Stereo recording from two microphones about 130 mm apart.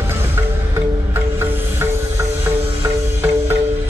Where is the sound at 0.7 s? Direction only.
20° right (ahead or behind).